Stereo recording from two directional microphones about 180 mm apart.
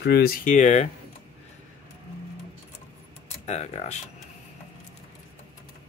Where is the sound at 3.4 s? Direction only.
40° left (ahead or behind).